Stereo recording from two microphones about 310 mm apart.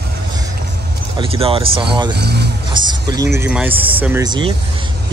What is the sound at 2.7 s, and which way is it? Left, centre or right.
Speech, centre.